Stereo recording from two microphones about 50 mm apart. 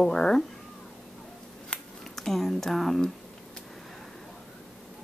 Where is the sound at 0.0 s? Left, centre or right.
Centre.